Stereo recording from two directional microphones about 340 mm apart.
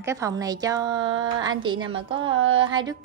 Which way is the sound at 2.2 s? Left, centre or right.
Right.